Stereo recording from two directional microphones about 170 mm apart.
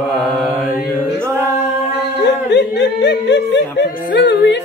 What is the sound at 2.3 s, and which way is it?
Speech, 90° left.